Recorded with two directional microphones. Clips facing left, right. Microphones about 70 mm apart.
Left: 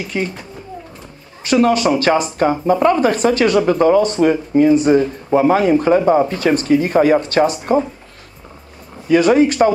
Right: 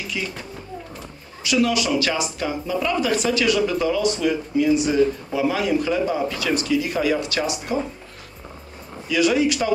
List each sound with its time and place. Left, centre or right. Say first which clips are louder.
0.0 s speech: left 7 dB; left
1.4 s speech: left 7 dB; left
9.0 s speech: left 7 dB; left